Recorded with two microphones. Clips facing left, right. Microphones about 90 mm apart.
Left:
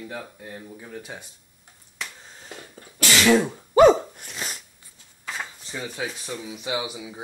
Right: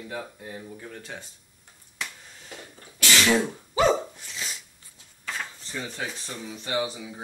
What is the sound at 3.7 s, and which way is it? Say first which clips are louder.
Hiccup: left 8 dB; 55° left (ahead or behind).